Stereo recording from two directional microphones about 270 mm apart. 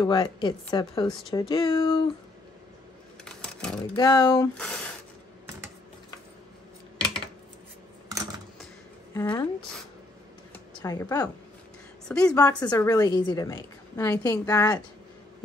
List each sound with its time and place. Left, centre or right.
0.0 s a woman's voice: centre
3.3 s typewriter: centre
3.9 s a woman's voice: centre
4.6 s speech: centre
9.1 s a woman's voice: centre
10.7 s a woman's voice: centre